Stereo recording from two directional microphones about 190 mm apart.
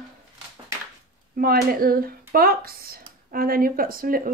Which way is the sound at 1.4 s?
50° right (ahead or behind).